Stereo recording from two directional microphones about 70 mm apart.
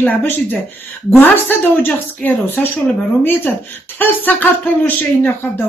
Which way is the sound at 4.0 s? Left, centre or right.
Left.